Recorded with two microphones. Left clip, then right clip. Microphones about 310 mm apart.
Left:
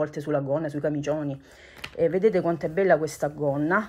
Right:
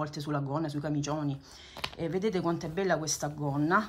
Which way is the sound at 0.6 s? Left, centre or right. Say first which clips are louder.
Left 6 dB; centre.